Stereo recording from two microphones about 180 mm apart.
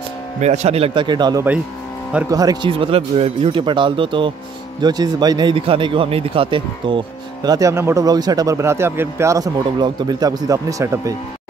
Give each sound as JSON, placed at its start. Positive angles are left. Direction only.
{"t": 0.4, "sound": "a man's voice", "side_deg": -40}
{"t": 7.4, "sound": "speech", "side_deg": -20}